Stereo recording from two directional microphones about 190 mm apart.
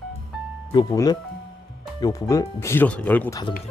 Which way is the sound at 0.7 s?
20° left (ahead or behind).